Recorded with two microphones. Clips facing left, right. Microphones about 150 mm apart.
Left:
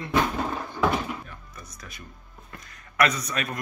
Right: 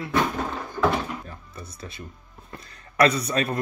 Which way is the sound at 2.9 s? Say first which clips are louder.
Right 4 dB; 30° right (ahead or behind).